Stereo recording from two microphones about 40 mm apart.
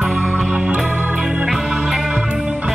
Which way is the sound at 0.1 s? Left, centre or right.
Right.